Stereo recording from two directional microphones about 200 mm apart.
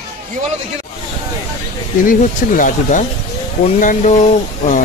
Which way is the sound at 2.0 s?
40° left (ahead or behind).